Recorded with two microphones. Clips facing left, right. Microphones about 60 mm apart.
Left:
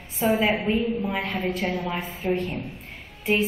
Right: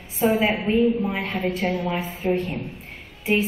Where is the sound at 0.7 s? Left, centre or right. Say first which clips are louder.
Right 4 dB; centre.